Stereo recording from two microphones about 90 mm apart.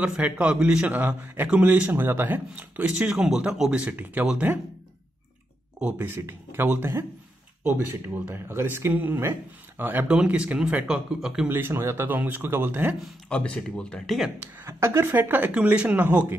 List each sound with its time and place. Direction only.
0.0 s speech: 15° right (ahead or behind)
5.8 s speech: 15° right (ahead or behind)
6.0 s speech: 30° right (ahead or behind); by 11.4 s 5° right (ahead or behind)
11.4 s speech: 25° right (ahead or behind)
13.3 s speech: 10° left (ahead or behind)
14.6 s a woman's voice: 30° right (ahead or behind)
15.1 s speech: 20° right (ahead or behind)